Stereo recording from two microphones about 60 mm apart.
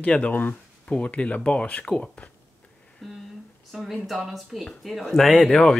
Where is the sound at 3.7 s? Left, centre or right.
Centre.